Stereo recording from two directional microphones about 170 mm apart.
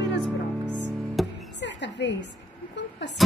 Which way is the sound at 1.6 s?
90° left.